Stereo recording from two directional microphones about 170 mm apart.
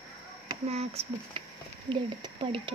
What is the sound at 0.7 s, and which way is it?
Speech, 40° right (ahead or behind).